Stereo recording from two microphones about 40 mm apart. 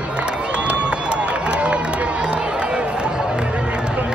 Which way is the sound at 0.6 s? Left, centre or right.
Right.